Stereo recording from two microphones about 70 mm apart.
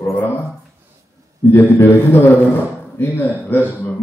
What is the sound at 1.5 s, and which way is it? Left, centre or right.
A man's voice, left.